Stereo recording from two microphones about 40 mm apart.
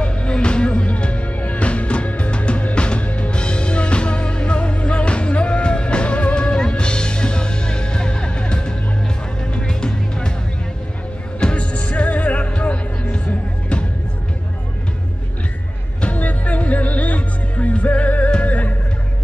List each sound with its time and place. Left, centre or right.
0.0 s music: left
11.3 s music: left
16.2 s music: left